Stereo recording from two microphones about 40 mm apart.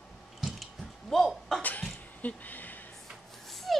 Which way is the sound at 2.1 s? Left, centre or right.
Left.